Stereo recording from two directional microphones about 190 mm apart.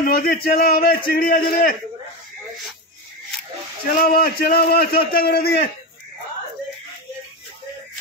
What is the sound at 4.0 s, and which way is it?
A man's voice, 55° left (ahead or behind).